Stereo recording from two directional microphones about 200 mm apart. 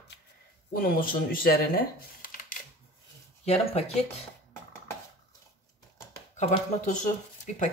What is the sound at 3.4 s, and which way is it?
Speech, 30° left (ahead or behind).